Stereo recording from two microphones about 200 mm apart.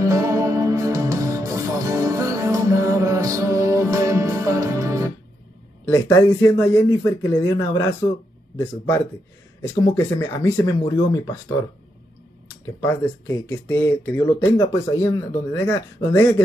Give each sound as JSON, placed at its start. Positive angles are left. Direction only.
{"t": 0.0, "sound": "music", "side_deg": -15}
{"t": 5.9, "sound": "speech", "side_deg": 15}
{"t": 12.6, "sound": "speech", "side_deg": 15}